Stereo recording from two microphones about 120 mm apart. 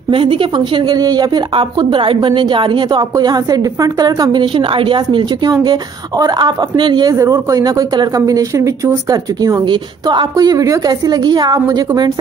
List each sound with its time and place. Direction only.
0.1 s speech: 45° right (ahead or behind)
0.8 s a woman's voice: 30° right (ahead or behind)